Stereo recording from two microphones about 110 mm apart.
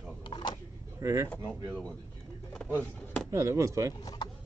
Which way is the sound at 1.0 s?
30° right (ahead or behind).